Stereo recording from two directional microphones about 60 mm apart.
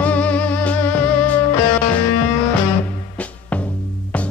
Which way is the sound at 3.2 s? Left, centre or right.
Left.